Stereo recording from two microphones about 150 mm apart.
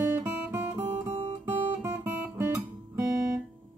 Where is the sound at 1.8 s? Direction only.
15° right (ahead or behind).